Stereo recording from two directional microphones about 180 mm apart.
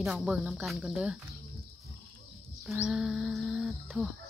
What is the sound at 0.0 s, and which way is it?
Speech, 5° right (ahead or behind).